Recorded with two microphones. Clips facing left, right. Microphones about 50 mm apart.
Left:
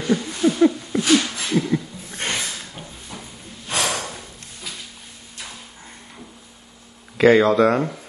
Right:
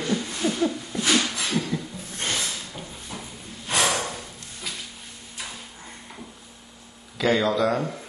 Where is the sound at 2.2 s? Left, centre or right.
Left.